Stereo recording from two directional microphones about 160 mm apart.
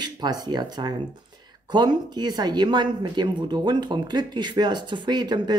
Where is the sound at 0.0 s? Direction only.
25° right (ahead or behind).